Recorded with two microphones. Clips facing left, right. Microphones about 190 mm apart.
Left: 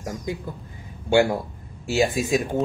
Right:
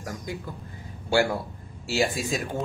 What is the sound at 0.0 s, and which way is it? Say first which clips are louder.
A man's voice: left 4 dB; 20° left (ahead or behind).